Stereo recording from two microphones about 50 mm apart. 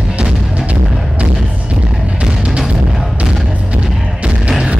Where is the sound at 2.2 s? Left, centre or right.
Centre.